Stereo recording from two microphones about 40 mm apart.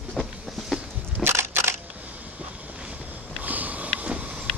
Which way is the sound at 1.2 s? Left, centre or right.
Right.